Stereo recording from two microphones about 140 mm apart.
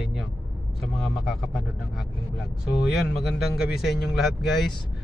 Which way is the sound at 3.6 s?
5° right (ahead or behind).